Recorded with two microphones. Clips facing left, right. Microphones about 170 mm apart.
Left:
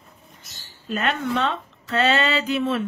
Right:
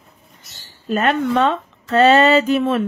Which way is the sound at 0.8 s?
45° right (ahead or behind).